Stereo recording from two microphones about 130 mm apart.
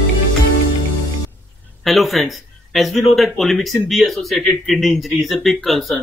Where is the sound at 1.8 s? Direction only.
Centre (ahead or behind).